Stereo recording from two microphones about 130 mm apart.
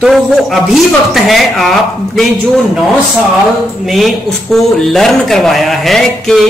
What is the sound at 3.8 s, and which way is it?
Speech, centre (ahead or behind).